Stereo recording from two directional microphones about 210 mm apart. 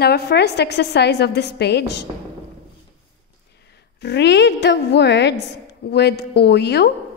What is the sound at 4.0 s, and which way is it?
A woman's voice, 55° left (ahead or behind).